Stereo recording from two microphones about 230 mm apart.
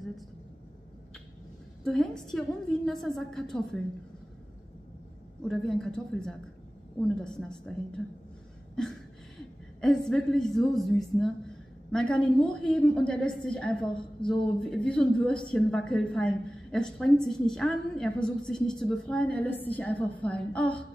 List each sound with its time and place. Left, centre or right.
1.9 s a woman's voice: centre
5.4 s a woman's voice: centre
9.8 s a woman's voice: centre